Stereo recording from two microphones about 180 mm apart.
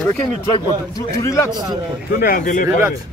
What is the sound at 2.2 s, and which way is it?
Speech, 50° left (ahead or behind).